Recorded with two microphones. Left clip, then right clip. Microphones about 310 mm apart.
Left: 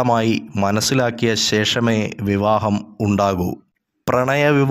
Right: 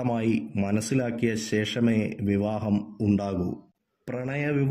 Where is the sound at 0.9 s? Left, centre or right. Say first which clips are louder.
Left 9 dB; left.